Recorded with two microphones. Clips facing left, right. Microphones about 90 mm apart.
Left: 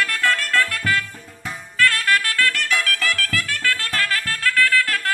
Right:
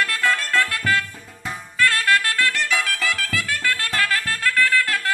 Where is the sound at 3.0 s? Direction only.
15° right (ahead or behind).